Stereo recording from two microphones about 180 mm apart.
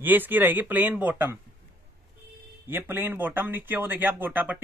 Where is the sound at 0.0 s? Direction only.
10° right (ahead or behind).